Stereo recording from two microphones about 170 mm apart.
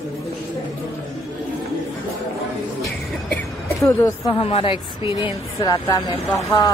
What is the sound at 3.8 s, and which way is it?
Speech, 15° left (ahead or behind).